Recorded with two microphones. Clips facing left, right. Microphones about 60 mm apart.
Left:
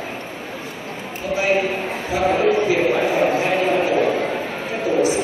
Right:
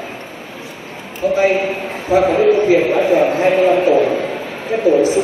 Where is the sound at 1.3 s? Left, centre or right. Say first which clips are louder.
Right 3 dB; right.